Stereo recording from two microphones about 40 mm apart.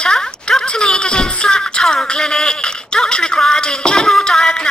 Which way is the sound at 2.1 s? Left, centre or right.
Centre.